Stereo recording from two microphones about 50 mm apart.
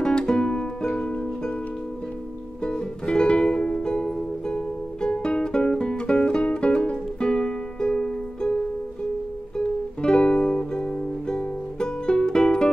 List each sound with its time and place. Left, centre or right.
0.0 s music: centre
2.6 s music: centre
9.6 s music: centre